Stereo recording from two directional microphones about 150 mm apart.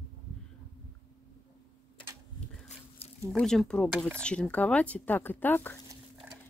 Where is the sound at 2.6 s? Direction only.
40° left (ahead or behind).